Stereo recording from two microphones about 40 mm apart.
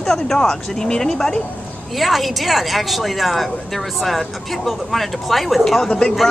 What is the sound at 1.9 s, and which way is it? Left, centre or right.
A woman's voice, centre.